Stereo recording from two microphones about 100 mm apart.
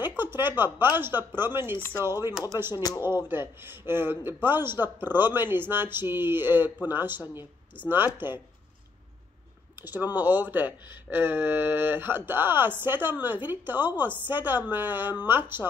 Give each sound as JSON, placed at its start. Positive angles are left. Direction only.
{"t": 0.2, "sound": "a man's voice", "side_deg": -20}
{"t": 2.7, "sound": "speech", "side_deg": 40}
{"t": 3.0, "sound": "a man's voice", "side_deg": -25}
{"t": 10.1, "sound": "a man's voice", "side_deg": -15}